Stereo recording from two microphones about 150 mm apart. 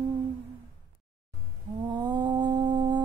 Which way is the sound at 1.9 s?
30° right (ahead or behind).